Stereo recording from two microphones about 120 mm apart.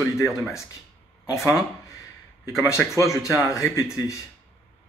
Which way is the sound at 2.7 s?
25° left (ahead or behind).